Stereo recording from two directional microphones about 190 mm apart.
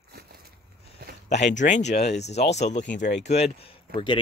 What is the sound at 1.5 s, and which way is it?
Speech, 40° left (ahead or behind).